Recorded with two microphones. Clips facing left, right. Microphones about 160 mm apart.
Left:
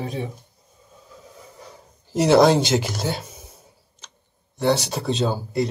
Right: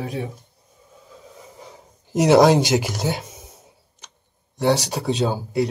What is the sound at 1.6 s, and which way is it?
Speech, 15° right (ahead or behind).